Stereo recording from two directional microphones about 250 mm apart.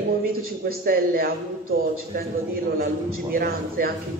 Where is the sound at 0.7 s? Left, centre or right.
Right.